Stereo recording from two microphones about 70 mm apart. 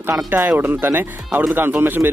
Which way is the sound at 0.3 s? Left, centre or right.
Right.